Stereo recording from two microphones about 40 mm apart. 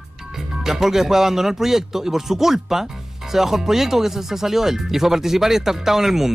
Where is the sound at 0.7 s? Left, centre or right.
Centre.